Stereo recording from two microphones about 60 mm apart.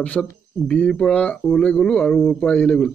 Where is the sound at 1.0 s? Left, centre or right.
Centre.